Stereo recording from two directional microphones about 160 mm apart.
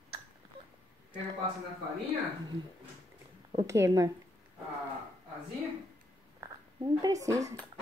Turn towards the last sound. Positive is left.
turn(degrees=-20)  # may be behind; listen again after turning